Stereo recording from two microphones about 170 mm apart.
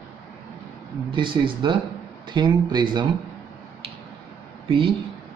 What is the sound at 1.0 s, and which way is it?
Speech, 30° right (ahead or behind).